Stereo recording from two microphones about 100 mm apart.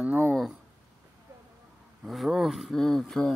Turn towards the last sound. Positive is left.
turn(degrees=5)  # may be behind; listen again after turning